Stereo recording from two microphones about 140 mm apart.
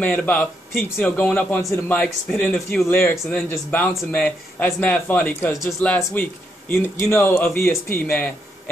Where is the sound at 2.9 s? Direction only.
15° left (ahead or behind).